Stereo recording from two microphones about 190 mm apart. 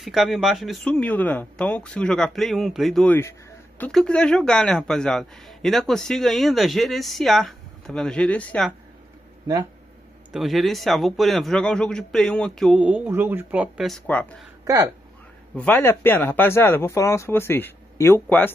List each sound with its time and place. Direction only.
0.0 s speech: centre (ahead or behind)
10.3 s speech: centre (ahead or behind)
14.6 s a sound: 15° right (ahead or behind)
15.5 s speech: 10° left (ahead or behind)